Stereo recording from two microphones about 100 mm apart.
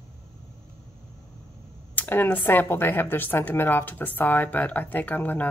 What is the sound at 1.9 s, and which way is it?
Speech, 20° left (ahead or behind).